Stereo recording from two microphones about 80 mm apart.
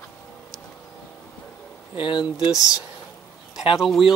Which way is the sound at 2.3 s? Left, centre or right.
Centre.